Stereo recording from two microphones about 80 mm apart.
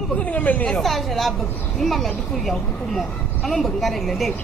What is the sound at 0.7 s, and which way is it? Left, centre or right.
A woman's voice, centre.